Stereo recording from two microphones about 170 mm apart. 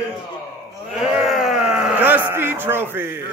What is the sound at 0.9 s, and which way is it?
Speech, 5° right (ahead or behind).